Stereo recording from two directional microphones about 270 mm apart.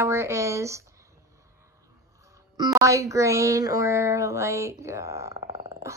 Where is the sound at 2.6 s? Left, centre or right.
Centre.